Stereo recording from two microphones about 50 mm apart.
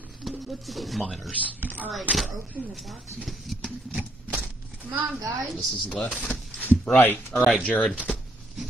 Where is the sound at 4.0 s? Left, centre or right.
Right.